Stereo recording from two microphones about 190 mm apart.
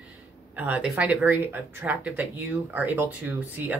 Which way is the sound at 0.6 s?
10° right (ahead or behind).